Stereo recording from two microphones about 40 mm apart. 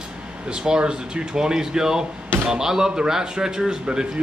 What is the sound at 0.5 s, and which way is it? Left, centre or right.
Speech, centre.